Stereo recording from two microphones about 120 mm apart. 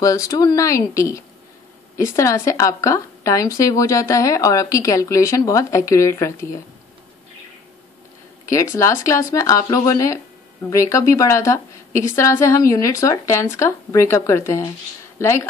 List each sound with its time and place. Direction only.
0.0 s a woman's voice: 30° left (ahead or behind)
8.5 s a woman's voice: 25° left (ahead or behind)